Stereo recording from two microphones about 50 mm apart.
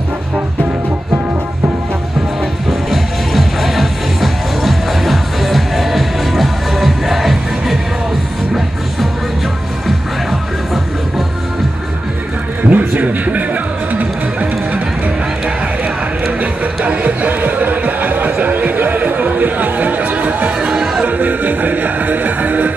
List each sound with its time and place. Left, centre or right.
2.9 s music: centre
12.6 s a sound: right
13.9 s music: right
16.3 s music: right
20.7 s music: centre
21.0 s music: right